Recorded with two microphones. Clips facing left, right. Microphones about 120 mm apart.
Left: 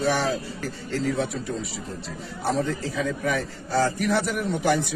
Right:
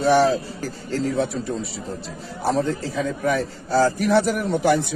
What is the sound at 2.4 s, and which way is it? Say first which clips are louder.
A man's voice: right 3 dB; 30° right (ahead or behind).